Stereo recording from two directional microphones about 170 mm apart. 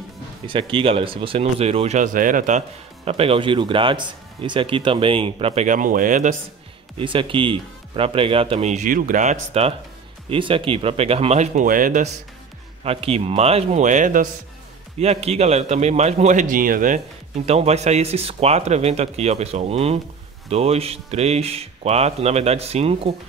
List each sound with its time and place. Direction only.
0.5 s speech: 30° right (ahead or behind); by 2.6 s 50° right (ahead or behind)
3.1 s speech: 35° right (ahead or behind)
7.0 s speech: 30° right (ahead or behind); by 12.1 s 50° right (ahead or behind)
12.8 s speech: 35° right (ahead or behind)
15.0 s speech: 40° right (ahead or behind)
17.5 s speech: 40° right (ahead or behind)